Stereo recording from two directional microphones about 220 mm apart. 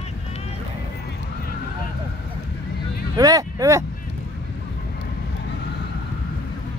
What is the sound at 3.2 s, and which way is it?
Speech, 15° right (ahead or behind).